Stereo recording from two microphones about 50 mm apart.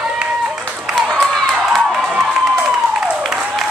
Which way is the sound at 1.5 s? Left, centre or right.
Centre.